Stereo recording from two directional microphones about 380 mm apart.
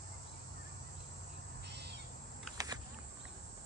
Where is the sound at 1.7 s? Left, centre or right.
Right.